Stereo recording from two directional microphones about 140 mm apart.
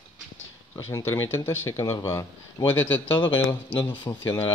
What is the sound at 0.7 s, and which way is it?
Speech, 20° left (ahead or behind).